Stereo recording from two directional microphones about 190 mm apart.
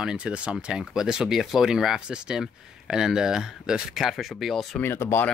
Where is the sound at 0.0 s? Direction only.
5° right (ahead or behind).